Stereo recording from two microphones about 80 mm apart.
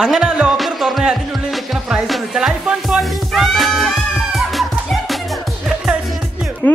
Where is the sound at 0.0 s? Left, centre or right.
Centre.